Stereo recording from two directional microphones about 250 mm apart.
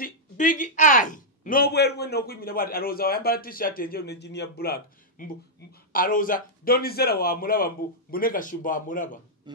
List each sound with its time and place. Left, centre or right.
0.0 s speech: left